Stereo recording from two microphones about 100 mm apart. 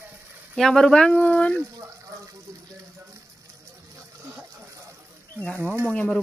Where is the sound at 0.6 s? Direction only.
5° left (ahead or behind).